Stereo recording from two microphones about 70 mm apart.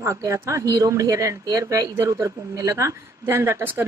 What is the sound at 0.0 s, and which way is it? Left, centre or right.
Speech, right.